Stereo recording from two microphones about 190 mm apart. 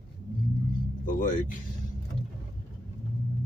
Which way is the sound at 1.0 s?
45° left (ahead or behind).